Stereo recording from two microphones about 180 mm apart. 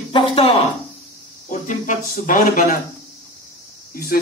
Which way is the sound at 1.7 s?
45° left (ahead or behind).